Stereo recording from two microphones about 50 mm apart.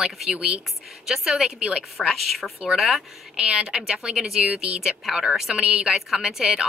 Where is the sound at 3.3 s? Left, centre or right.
Right.